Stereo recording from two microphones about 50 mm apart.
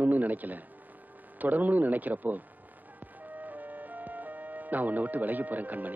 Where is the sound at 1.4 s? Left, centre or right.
Right.